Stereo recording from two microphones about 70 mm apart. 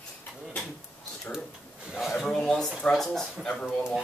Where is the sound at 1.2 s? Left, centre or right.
Centre.